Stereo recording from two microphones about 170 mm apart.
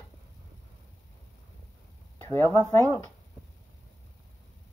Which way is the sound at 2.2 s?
10° left (ahead or behind).